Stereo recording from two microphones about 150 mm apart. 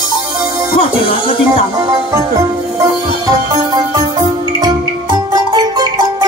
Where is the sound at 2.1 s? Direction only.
20° right (ahead or behind).